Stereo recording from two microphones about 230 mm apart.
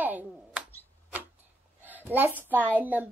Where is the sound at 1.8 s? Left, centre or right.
Centre.